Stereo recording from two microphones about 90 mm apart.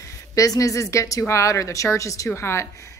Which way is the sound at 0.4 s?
40° left (ahead or behind).